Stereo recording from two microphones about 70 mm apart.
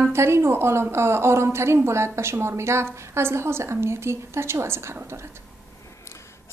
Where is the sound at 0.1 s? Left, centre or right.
Right.